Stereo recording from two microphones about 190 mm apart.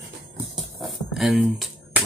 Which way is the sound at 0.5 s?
Centre (ahead or behind).